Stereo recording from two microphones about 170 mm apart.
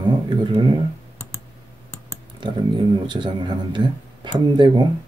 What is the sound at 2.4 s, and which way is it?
Speech, 30° right (ahead or behind).